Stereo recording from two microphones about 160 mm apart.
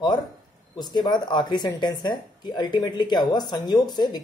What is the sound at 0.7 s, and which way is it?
Speech, 25° left (ahead or behind).